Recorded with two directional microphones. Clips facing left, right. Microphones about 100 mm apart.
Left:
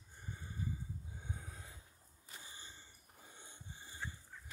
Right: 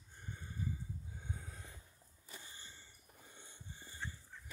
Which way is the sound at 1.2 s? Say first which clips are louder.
Even; 15° left (ahead or behind).